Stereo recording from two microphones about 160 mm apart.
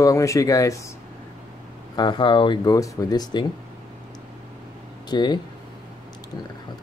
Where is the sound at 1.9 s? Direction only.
30° left (ahead or behind).